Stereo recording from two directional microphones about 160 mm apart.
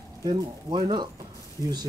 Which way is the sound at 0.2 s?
25° right (ahead or behind).